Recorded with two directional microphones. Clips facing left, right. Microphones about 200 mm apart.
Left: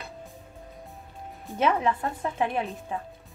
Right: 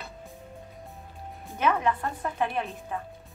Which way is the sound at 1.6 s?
25° left (ahead or behind).